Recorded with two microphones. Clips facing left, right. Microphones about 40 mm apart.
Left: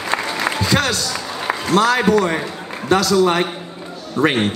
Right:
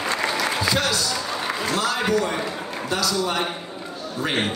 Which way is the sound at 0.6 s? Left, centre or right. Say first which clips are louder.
Left 4 dB; left.